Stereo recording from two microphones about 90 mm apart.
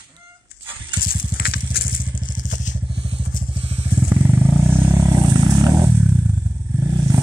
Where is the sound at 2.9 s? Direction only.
80° right.